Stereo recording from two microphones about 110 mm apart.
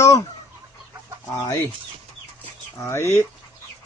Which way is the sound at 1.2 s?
40° left (ahead or behind).